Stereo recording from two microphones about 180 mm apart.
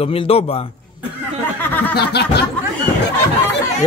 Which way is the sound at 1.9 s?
65° left (ahead or behind).